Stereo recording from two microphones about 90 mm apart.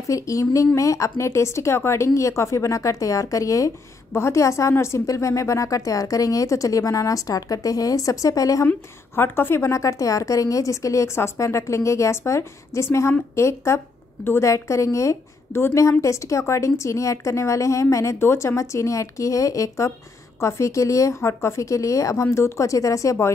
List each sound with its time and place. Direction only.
0.1 s a woman's voice: 35° left (ahead or behind)
8.6 s a woman's voice: 25° left (ahead or behind)